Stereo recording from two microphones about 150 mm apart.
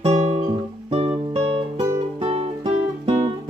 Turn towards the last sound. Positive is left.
turn(degrees=-35)  # may be behind; listen again after turning